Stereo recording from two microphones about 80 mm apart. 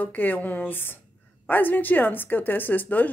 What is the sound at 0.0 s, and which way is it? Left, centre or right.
Speech, left.